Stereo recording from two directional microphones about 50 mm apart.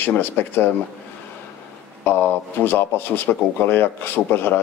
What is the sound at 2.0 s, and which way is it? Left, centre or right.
Speech, left.